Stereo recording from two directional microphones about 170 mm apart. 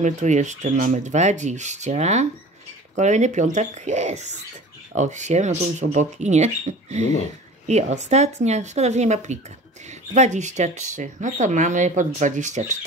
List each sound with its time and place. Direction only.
0.0 s speech: 45° right (ahead or behind)